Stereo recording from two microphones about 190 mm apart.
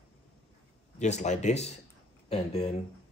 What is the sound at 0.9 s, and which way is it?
Speech, 40° left (ahead or behind).